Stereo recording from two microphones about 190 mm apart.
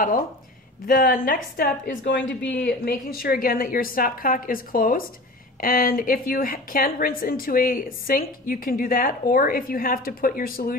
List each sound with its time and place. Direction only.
0.8 s a woman's voice: 50° left (ahead or behind)
2.2 s a woman's voice: 65° left (ahead or behind)